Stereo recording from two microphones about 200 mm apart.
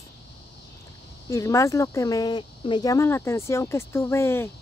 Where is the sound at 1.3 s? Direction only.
15° left (ahead or behind).